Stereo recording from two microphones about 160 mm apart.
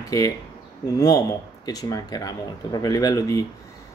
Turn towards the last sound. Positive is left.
turn(degrees=20)  # may be behind; listen again after turning